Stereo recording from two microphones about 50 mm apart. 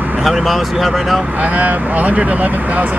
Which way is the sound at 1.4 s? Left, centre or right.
Right.